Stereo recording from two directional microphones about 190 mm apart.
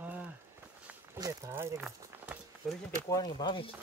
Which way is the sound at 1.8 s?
Centre (ahead or behind).